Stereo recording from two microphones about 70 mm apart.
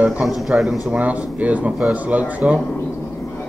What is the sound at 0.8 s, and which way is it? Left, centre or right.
Speech, right.